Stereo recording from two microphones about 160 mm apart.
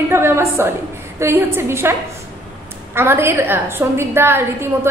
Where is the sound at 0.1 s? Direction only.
15° right (ahead or behind).